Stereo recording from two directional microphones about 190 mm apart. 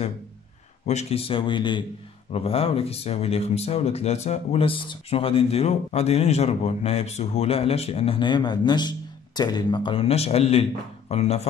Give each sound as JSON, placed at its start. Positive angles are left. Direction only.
{"t": 0.8, "sound": "speech", "side_deg": 35}